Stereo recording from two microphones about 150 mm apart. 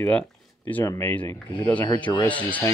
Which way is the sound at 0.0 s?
10° left (ahead or behind).